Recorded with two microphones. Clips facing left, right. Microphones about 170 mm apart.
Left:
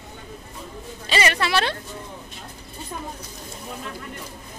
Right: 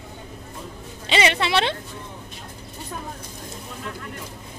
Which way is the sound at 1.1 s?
20° right (ahead or behind).